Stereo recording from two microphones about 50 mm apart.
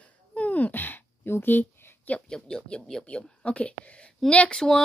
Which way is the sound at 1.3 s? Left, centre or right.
Left.